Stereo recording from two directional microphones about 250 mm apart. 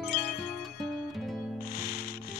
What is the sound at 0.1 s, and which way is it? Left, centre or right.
Music, left.